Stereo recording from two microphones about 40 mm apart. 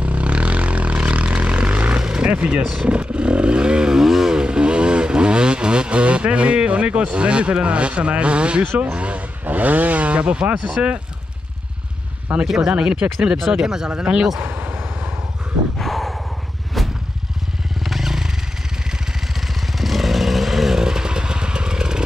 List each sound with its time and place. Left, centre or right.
0.0 s vehicle: right
1.9 s vehicle: right
9.4 s speech: right
12.4 s speech: centre
13.5 s speech: centre
14.4 s vehicle: right
15.8 s a sound: centre
16.8 s vehicle: centre
17.8 s motorcycle: centre
19.4 s motorcycle: centre